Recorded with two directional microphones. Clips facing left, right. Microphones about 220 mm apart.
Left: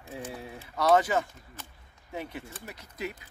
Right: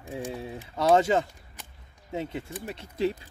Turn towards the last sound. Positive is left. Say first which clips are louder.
# right 9 dB
turn(degrees=-30)  # may be behind; listen again after turning